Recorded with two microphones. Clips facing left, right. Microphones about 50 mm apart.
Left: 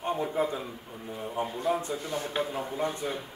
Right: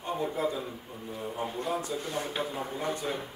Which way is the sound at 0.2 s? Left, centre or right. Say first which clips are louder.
Left 1 dB; centre.